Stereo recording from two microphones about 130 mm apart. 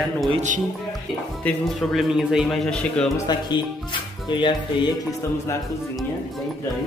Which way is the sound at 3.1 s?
35° left (ahead or behind).